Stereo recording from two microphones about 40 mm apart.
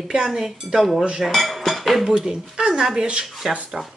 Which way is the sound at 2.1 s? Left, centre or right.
Centre.